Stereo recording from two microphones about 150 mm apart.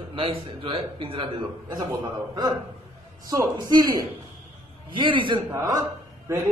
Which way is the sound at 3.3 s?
25° right (ahead or behind).